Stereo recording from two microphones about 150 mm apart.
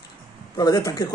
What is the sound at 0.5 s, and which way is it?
Speech, 25° left (ahead or behind).